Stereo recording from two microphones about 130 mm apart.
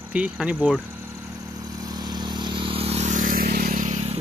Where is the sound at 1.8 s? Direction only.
30° right (ahead or behind); by 4.1 s 65° right (ahead or behind).